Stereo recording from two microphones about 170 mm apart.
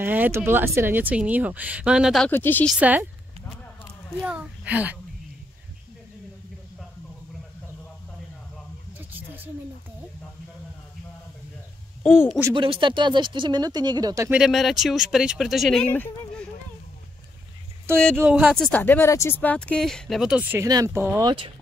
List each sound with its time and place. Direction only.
0.0 s speech: 10° right (ahead or behind)
2.2 s speech: 10° left (ahead or behind)
2.7 s speech: 5° right (ahead or behind)
4.2 s speech: 10° right (ahead or behind)
8.9 s a sound: 10° right (ahead or behind)
12.0 s speech: 15° left (ahead or behind)
12.5 s speech: 30° right (ahead or behind)
14.3 s speech: centre (ahead or behind)
17.9 s speech: 5° left (ahead or behind)
20.5 s speech: 20° right (ahead or behind)